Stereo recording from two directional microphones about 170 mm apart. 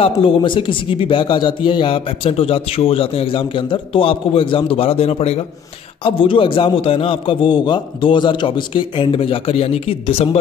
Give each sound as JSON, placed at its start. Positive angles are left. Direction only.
{"t": 0.0, "sound": "speech", "side_deg": 30}